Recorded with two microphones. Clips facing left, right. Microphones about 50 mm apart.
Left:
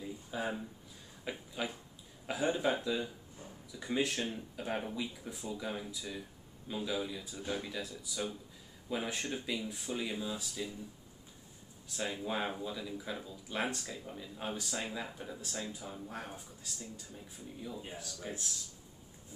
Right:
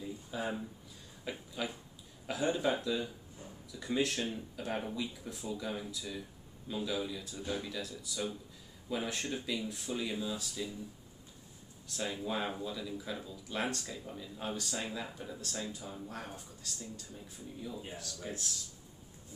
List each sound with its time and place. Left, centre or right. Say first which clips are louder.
0.3 s speech: even; centre
12.0 s speech: even; centre
17.9 s speech: even; centre